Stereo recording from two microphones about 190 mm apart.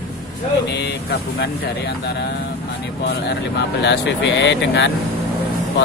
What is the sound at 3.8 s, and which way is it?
Speech, 70° left (ahead or behind).